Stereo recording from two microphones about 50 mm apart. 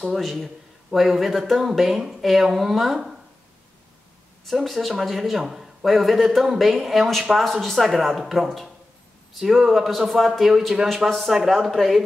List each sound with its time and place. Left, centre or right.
0.0 s speech: centre
4.5 s speech: centre